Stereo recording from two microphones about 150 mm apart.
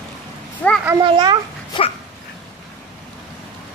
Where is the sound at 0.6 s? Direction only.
10° left (ahead or behind).